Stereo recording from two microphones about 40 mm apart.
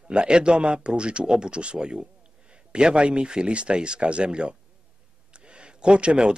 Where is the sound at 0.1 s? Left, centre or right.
Right.